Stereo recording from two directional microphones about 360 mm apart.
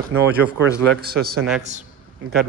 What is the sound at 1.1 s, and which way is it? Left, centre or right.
Speech, right.